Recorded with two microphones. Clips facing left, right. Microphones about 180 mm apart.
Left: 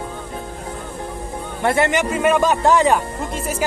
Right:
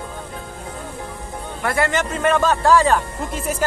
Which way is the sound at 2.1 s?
10° left (ahead or behind).